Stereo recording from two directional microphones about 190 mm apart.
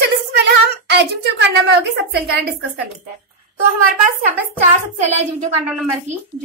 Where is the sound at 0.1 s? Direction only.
60° right (ahead or behind).